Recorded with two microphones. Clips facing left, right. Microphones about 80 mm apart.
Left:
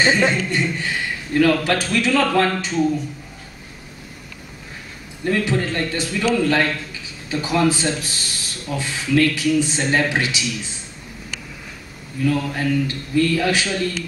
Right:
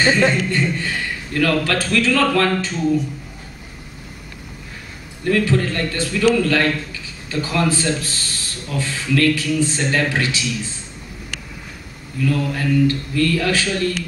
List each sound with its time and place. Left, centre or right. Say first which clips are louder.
0.0 s a man's voice: right 1 dB; centre
5.2 s a man's voice: right 2 dB; centre
12.3 s a man's voice: even; left